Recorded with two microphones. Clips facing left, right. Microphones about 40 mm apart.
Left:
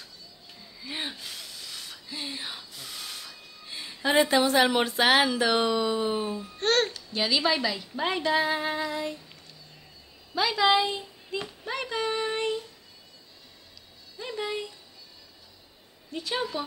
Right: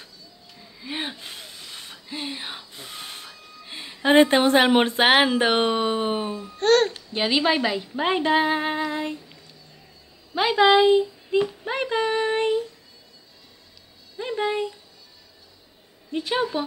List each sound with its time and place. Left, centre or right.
0.6 s a sound: right
5.2 s speech: right
6.5 s speech: centre
6.9 s a woman's voice: right
10.3 s child singing: right
14.1 s music: right
16.1 s a woman's voice: right